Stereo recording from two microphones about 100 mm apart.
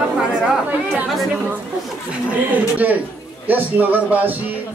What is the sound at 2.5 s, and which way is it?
Speech, 15° right (ahead or behind).